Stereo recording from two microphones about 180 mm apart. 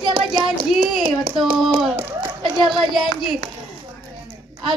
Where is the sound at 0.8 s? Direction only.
50° right (ahead or behind).